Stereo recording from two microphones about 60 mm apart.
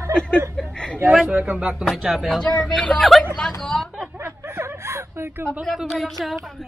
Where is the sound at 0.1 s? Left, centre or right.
Centre.